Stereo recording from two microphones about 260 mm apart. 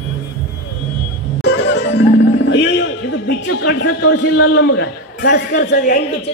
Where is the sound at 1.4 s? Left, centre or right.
Left.